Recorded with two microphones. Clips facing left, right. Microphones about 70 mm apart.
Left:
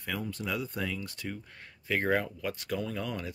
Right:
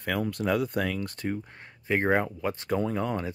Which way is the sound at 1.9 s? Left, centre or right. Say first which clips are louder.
Right 4 dB; right.